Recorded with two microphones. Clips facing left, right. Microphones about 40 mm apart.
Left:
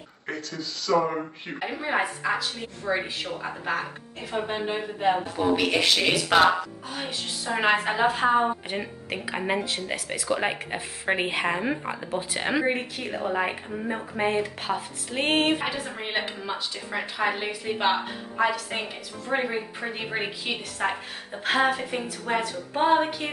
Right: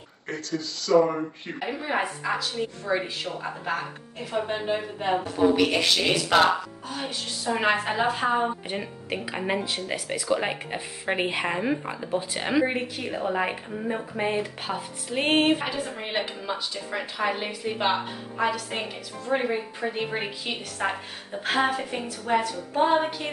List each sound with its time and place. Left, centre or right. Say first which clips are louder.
0.3 s a woman's voice: right 2 dB; centre
7.5 s a woman's voice: left 1 dB; centre
10.2 s a woman's voice: even; centre
19.2 s a woman's voice: right 1 dB; centre
20.1 s a sound: left 1 dB; left
20.8 s a woman's voice: even; centre
22.5 s a sound: even; centre